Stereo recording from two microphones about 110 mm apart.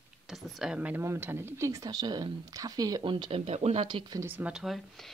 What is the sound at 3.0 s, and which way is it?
Speech, 50° right (ahead or behind).